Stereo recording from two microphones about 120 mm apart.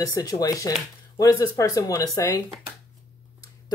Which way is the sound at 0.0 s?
30° left (ahead or behind).